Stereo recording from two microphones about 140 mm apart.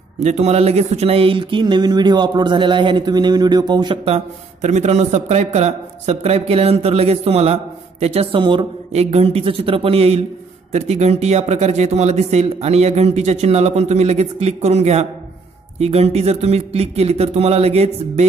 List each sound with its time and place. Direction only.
0.2 s speech: 50° right (ahead or behind)
4.6 s a man's voice: 55° right (ahead or behind); by 8.6 s 35° right (ahead or behind)
8.9 s a man's voice: 45° right (ahead or behind)